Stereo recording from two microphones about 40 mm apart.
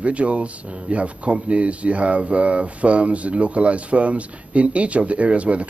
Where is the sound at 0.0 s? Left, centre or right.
Right.